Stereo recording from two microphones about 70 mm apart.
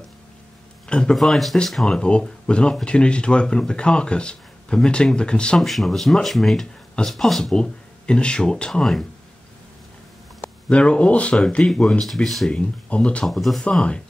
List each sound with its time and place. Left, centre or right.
0.8 s speech: centre
1.1 s speech: centre
5.6 s speech: centre
7.5 s speech: centre
10.7 s speech: centre
12.0 s speech: centre
12.4 s speech: centre
13.2 s speech: centre
13.6 s speech: centre